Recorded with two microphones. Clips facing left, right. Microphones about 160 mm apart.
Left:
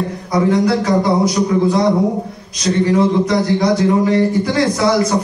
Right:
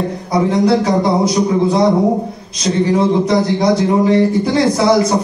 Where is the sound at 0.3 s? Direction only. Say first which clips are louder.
Right 1 dB; 25° right (ahead or behind).